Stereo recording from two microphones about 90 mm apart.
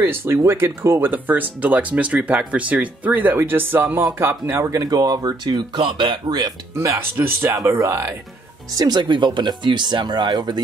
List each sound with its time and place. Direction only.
0.0 s speech: 25° right (ahead or behind); by 6.5 s 55° right (ahead or behind)
6.8 s speech: 30° right (ahead or behind)
8.7 s speech: 50° right (ahead or behind)